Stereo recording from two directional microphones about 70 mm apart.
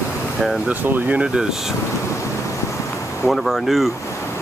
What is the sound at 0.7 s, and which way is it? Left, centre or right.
Speech, right.